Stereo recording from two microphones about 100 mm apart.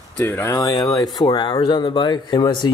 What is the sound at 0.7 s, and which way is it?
Speech, 45° left (ahead or behind).